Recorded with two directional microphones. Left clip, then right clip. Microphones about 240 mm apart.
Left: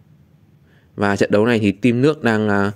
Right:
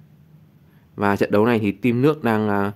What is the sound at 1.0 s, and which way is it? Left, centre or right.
Speech, centre.